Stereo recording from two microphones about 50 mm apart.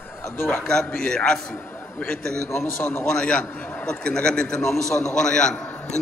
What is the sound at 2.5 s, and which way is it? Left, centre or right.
Speech, left.